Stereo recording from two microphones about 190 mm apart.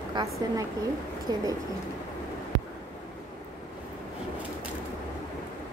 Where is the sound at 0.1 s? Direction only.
20° right (ahead or behind).